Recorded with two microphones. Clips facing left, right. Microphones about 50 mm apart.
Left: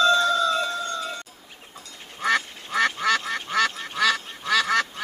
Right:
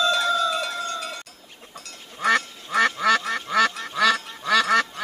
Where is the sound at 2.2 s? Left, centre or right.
Centre.